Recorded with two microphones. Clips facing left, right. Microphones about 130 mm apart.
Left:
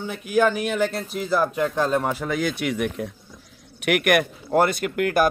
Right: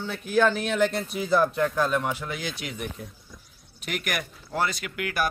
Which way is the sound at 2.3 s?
55° left (ahead or behind).